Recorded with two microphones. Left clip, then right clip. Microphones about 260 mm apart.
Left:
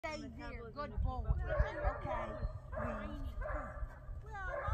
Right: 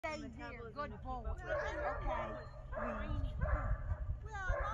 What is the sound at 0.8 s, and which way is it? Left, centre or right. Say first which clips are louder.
Speech: right 1 dB; centre.